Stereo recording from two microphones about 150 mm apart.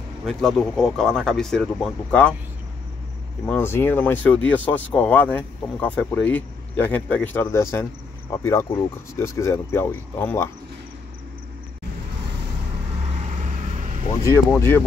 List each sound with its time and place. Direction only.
0.2 s speech: 5° left (ahead or behind)
3.4 s speech: 15° left (ahead or behind)
9.1 s speech: 20° left (ahead or behind)
13.3 s vehicle: 55° right (ahead or behind)
14.2 s speech: 15° left (ahead or behind)